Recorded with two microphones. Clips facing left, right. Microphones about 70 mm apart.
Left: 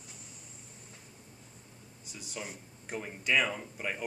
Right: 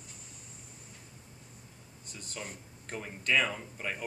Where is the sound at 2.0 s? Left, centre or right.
Centre.